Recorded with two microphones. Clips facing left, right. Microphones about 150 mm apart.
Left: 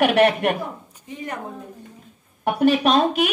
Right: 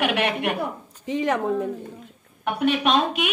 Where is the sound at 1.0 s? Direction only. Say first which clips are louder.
Right 9 dB; 90° right.